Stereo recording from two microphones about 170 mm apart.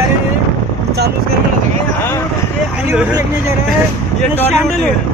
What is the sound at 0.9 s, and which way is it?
Vehicle, 75° right (ahead or behind).